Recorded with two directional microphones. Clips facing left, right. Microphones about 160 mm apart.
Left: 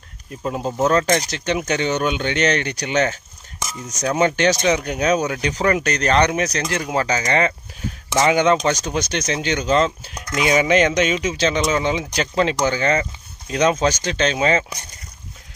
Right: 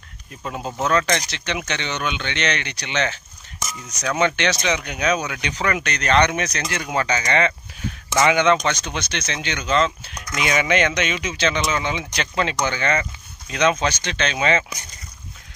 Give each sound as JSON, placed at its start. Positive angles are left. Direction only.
{"t": 0.4, "sound": "speech", "side_deg": 30}
{"t": 1.3, "sound": "speech", "side_deg": 45}